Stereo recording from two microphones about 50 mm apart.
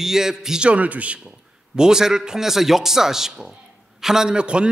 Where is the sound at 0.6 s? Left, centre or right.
Right.